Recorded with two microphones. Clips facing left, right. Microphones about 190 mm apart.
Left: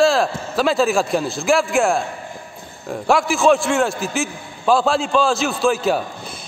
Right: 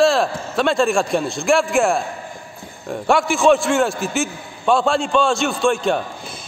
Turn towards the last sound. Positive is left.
turn(degrees=5)  # may be behind; listen again after turning